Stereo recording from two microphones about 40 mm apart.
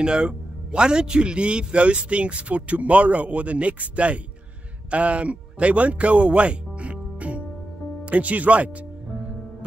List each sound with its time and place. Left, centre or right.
0.0 s a man's voice: right